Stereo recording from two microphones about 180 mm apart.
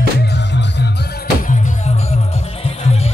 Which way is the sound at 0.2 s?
70° left (ahead or behind).